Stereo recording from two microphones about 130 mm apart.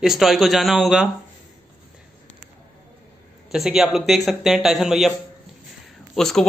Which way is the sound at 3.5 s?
Centre (ahead or behind).